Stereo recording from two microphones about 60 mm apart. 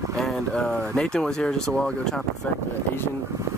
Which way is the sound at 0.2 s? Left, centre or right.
Centre.